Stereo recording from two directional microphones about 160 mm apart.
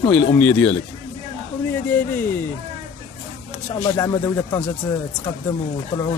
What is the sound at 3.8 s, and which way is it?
Speech, 25° left (ahead or behind).